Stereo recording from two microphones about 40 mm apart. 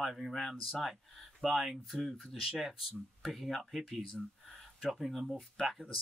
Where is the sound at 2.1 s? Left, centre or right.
Centre.